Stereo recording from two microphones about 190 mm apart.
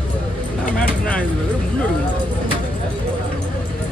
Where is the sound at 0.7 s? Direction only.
5° left (ahead or behind).